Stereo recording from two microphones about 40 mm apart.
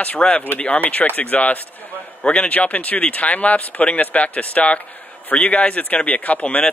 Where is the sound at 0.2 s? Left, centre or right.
Left.